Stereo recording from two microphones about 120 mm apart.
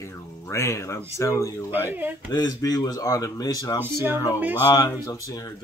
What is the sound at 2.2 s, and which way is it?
Speech, 30° left (ahead or behind).